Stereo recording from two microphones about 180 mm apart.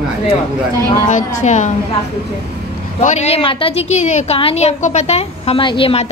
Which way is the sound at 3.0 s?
40° left (ahead or behind).